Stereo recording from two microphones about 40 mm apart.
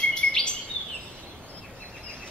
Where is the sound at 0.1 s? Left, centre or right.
Left.